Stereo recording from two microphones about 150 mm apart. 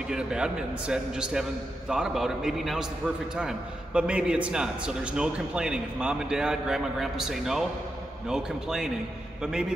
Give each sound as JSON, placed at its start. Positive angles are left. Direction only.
{"t": 0.1, "sound": "a man's voice", "side_deg": -5}